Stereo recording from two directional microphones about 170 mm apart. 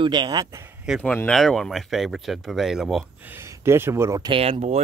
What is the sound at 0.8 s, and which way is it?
Speech, 5° right (ahead or behind).